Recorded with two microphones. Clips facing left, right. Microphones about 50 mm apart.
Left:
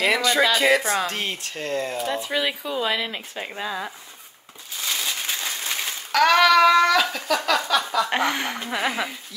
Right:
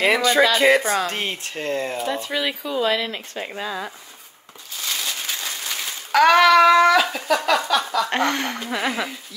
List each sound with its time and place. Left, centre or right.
0.0 s speech: right
2.1 s speech: centre
4.8 s a sound: centre
5.6 s a sound: left
6.1 s speech: centre
7.6 s speech: centre